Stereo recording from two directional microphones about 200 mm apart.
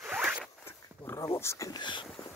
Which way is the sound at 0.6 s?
10° left (ahead or behind).